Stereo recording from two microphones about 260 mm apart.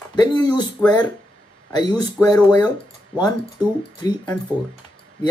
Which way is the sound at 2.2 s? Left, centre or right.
Centre.